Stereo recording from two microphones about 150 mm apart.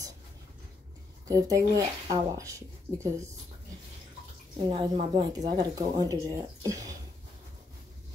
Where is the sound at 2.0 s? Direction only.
25° right (ahead or behind).